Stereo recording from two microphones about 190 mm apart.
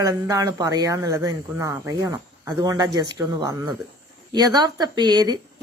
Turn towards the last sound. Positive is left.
turn(degrees=-20)  # may be behind; listen again after turning